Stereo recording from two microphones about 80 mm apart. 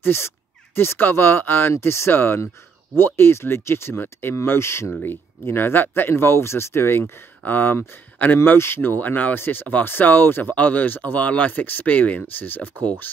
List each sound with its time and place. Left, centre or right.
0.0 s speech: left